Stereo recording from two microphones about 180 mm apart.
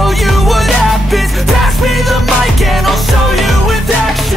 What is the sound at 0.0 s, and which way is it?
Music, centre (ahead or behind).